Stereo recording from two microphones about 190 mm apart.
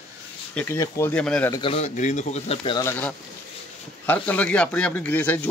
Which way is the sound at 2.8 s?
10° left (ahead or behind).